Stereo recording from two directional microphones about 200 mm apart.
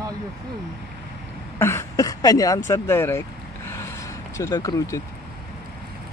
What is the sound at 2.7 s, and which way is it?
Vehicle, 10° left (ahead or behind).